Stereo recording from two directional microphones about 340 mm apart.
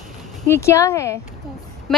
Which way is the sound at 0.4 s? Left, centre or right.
Centre.